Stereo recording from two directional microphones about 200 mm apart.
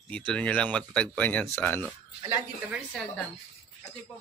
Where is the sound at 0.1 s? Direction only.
5° left (ahead or behind).